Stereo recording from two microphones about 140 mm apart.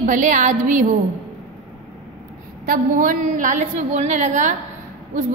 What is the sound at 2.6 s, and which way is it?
A woman's voice, 80° right.